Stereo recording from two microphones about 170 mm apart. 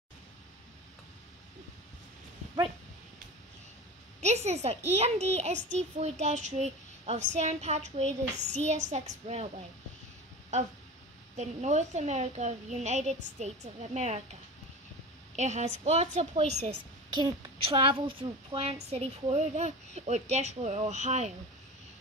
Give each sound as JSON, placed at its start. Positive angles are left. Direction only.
{"t": 4.2, "sound": "a woman's voice", "side_deg": -40}
{"t": 11.3, "sound": "a woman's voice", "side_deg": -45}
{"t": 15.3, "sound": "a woman's voice", "side_deg": -45}
{"t": 17.1, "sound": "a woman's voice", "side_deg": -30}